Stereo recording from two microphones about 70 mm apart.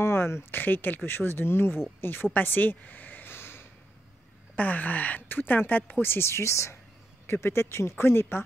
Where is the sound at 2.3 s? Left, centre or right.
Left.